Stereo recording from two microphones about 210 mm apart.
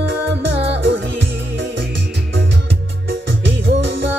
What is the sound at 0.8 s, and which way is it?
Music, 60° right (ahead or behind).